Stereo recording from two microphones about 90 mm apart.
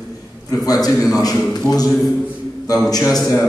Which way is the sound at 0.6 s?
45° left (ahead or behind).